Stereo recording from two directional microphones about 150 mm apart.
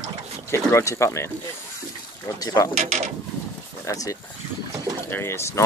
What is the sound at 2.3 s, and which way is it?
Speech, 25° left (ahead or behind).